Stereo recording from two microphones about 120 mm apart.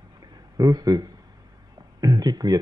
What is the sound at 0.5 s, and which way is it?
Speech, 30° right (ahead or behind).